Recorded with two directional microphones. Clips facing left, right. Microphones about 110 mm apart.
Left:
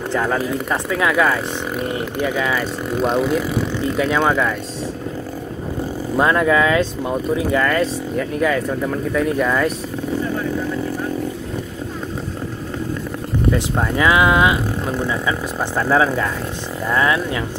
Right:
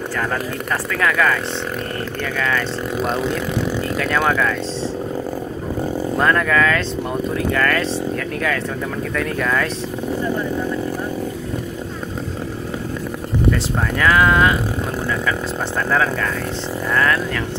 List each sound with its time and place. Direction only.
0.1 s speech: 15° left (ahead or behind)
2.9 s speech: centre (ahead or behind)
6.1 s speech: 15° left (ahead or behind)
13.5 s speech: 20° left (ahead or behind)